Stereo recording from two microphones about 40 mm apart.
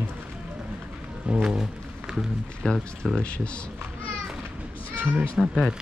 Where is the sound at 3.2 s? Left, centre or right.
Left.